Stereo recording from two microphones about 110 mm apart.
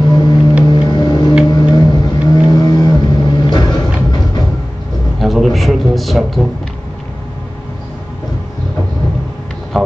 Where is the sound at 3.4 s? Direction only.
45° left (ahead or behind).